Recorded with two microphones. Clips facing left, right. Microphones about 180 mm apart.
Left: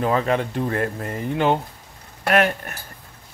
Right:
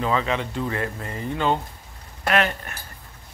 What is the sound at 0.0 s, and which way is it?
Speech, 50° left (ahead or behind).